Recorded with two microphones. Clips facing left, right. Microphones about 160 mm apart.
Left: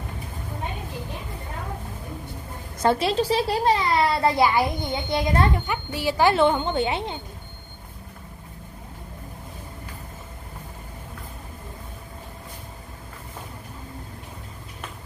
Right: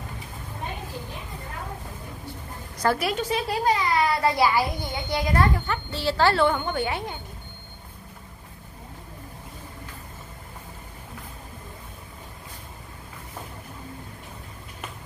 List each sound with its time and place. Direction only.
2.8 s a child's voice: 25° left (ahead or behind)